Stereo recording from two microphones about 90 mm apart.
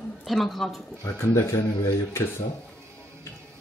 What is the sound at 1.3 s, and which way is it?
Speech, 35° left (ahead or behind).